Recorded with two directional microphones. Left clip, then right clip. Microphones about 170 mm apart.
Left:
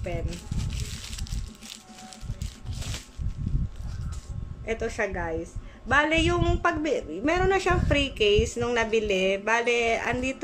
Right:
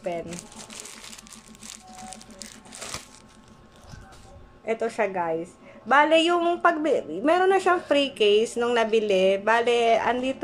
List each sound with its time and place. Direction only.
4.6 s a woman's voice: 10° left (ahead or behind)
7.2 s a woman's voice: 10° left (ahead or behind)